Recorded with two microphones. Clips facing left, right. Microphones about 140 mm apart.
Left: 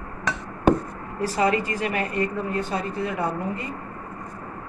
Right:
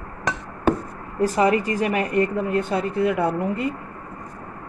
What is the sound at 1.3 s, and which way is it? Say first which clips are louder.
Speech: right 2 dB; 45° right (ahead or behind).